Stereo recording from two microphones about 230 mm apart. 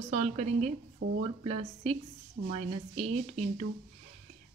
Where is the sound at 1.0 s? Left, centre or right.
Right.